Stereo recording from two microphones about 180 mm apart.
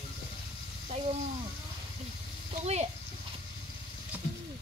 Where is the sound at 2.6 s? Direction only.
35° right (ahead or behind).